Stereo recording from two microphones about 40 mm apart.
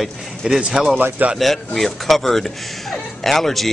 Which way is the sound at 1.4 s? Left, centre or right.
Centre.